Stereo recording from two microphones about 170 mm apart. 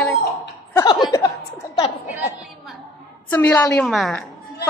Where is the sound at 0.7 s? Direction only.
20° left (ahead or behind).